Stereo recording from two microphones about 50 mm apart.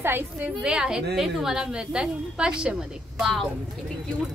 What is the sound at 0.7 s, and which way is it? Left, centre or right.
A woman's voice, centre.